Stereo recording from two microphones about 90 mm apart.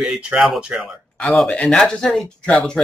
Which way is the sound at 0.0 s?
10° right (ahead or behind).